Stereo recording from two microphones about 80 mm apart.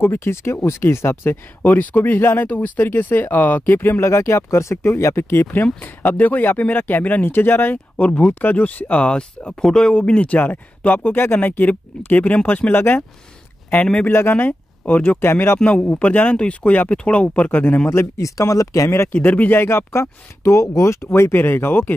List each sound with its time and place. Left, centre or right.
0.0 s speech: left
14.0 s speech: left
17.8 s speech: left
19.1 s speech: left